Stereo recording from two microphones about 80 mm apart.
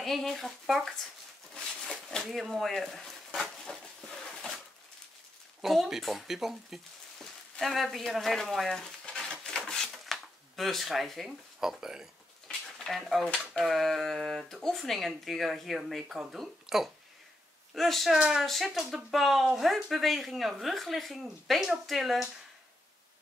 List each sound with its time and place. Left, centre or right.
0.0 s speech: centre
1.5 s a sound: centre
5.6 s speech: centre
9.7 s zipper: centre
12.4 s a sound: centre
13.5 s speech: centre